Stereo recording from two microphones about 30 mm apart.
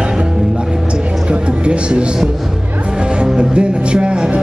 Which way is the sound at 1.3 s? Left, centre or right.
Right.